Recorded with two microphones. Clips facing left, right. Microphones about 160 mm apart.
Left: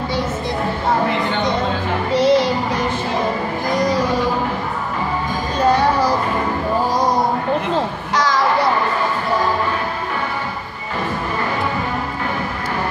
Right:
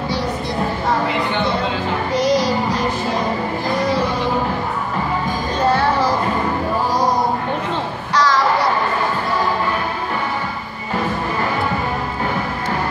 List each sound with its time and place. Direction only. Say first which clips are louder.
2.1 s music: left 3 dB; 25° left (ahead or behind)
5.8 s music: left 1 dB; 15° left (ahead or behind)
8.1 s a sound: right 3 dB; 20° left (ahead or behind)